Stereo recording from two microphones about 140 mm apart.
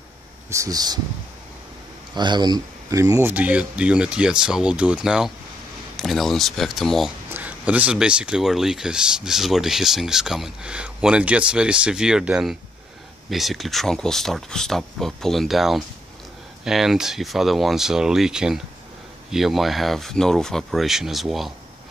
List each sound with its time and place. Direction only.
0.5 s speech: 25° right (ahead or behind)
2.1 s speech: 30° right (ahead or behind); by 7.1 s centre (ahead or behind)
7.2 s speech: 10° right (ahead or behind)